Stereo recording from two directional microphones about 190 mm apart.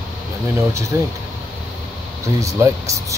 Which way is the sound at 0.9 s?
15° right (ahead or behind).